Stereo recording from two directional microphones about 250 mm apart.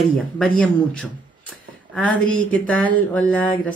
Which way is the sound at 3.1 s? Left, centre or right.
Centre.